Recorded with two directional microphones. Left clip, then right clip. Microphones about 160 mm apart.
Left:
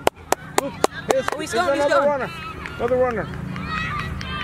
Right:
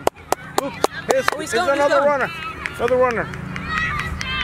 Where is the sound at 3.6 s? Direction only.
Centre (ahead or behind).